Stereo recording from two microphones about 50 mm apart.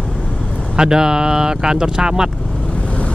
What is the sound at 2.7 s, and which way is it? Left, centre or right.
Vehicle, left.